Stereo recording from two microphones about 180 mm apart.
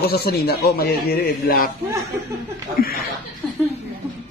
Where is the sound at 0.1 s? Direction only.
60° left (ahead or behind).